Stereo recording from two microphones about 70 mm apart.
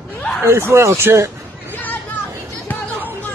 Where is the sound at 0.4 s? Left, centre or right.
Right.